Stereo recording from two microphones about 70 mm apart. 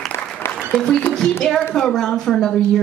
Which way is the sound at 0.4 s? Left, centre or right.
Left.